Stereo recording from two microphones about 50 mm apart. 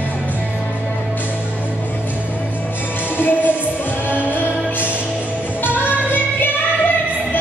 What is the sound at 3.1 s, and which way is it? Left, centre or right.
Music, left.